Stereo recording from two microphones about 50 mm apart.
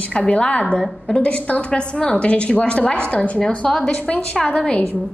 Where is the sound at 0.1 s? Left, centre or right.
Left.